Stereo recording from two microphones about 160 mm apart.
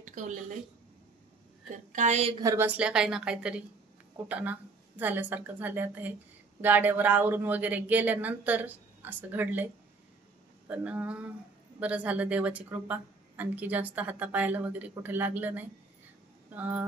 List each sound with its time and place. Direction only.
0.0 s a woman's voice: 50° right (ahead or behind)
1.9 s a woman's voice: 50° right (ahead or behind)
2.3 s a woman's voice: 20° right (ahead or behind)
2.6 s a woman's voice: 10° right (ahead or behind)
10.7 s a woman's voice: 10° right (ahead or behind)